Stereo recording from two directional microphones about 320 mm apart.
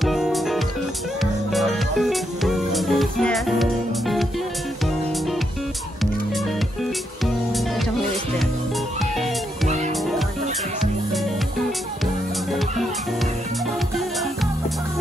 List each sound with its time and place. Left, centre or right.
0.0 s music: centre